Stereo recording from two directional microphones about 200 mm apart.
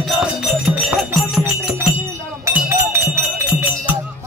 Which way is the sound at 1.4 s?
10° right (ahead or behind).